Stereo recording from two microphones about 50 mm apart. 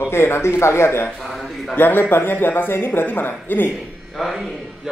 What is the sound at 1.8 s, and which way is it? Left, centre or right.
Speech, left.